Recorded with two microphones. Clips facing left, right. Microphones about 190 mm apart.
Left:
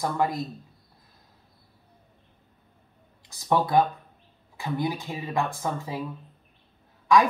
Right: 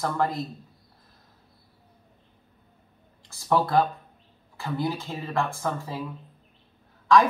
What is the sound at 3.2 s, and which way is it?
Speech, 15° left (ahead or behind).